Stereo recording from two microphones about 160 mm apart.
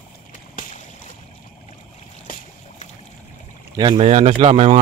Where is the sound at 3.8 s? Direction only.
35° right (ahead or behind).